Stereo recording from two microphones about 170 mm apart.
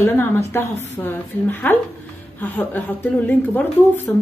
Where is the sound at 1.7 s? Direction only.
10° left (ahead or behind).